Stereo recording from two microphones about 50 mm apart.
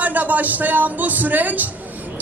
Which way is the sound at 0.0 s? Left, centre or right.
Right.